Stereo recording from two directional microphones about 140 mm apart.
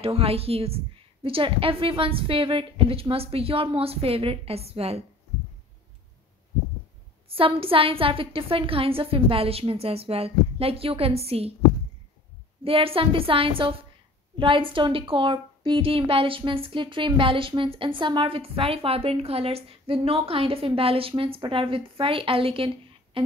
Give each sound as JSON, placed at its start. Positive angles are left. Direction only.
{"t": 0.0, "sound": "a woman's voice", "side_deg": -45}
{"t": 7.2, "sound": "a woman's voice", "side_deg": -40}
{"t": 12.6, "sound": "a woman's voice", "side_deg": -40}